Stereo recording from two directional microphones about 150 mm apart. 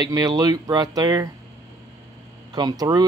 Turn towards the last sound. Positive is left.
turn(degrees=-25)  # may be behind; listen again after turning